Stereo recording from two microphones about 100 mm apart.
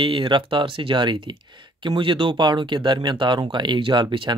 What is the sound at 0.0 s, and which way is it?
Speech, 55° right (ahead or behind).